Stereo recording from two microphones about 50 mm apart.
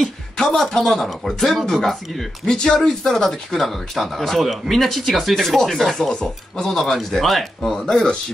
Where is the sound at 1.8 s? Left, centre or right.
Centre.